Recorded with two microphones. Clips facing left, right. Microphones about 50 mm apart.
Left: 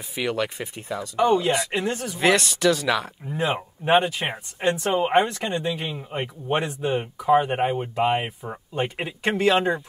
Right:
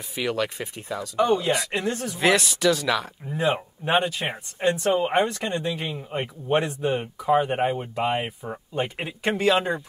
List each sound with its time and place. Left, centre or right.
0.1 s speech: centre
4.6 s speech: left
5.2 s speech: centre